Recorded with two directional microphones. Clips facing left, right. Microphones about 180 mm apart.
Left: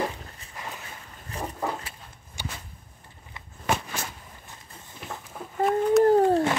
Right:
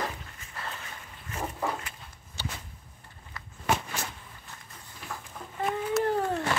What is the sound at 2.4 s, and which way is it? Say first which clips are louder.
Whip: left 1 dB; 15° left (ahead or behind).